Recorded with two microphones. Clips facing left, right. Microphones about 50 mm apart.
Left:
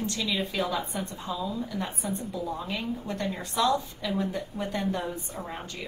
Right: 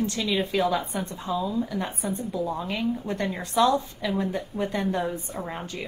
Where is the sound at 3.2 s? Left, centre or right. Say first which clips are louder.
Right 5 dB; right.